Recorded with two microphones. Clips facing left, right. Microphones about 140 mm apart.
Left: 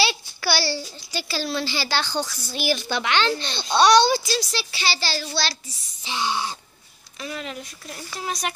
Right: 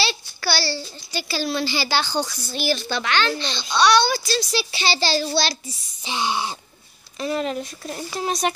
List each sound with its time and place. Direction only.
0.0 s a sound: 10° left (ahead or behind)
1.1 s a woman's voice: centre (ahead or behind)
2.3 s speech: 10° left (ahead or behind)
3.3 s a child's voice: 45° left (ahead or behind)
4.2 s speech: 10° left (ahead or behind)
4.5 s speech: 10° right (ahead or behind)
4.8 s a child's voice: 25° right (ahead or behind)
7.2 s a child's voice: 35° right (ahead or behind)